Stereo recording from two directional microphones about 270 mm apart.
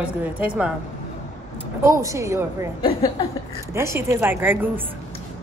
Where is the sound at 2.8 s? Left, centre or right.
Centre.